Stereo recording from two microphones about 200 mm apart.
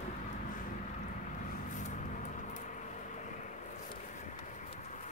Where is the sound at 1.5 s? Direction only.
40° left (ahead or behind).